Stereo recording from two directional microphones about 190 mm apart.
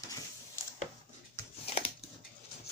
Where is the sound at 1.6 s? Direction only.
30° left (ahead or behind).